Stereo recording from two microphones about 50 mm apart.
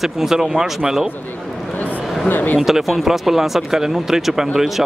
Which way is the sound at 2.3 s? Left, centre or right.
Left.